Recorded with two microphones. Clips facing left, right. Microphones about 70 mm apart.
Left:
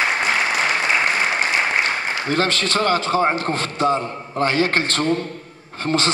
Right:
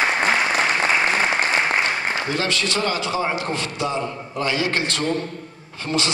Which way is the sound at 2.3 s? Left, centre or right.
Left.